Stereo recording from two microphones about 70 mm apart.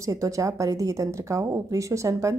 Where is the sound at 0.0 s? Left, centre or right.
Right.